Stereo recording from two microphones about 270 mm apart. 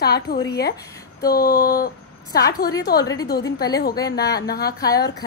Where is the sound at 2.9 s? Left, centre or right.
Centre.